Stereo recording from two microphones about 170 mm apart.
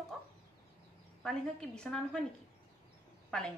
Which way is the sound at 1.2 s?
5° left (ahead or behind).